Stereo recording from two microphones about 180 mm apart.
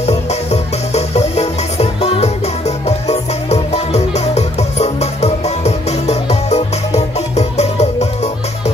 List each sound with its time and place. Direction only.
0.0 s music: 35° left (ahead or behind)